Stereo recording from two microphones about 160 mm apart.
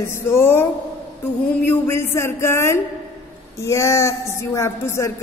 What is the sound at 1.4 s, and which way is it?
A woman's voice, 10° left (ahead or behind).